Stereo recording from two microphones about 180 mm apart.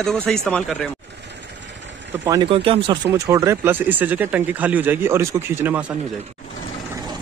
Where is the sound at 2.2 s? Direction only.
25° right (ahead or behind).